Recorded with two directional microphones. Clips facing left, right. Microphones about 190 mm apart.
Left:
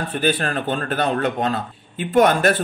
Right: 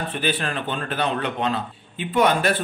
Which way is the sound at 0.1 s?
45° left (ahead or behind).